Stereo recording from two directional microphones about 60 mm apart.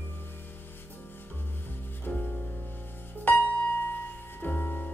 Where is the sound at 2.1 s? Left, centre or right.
Left.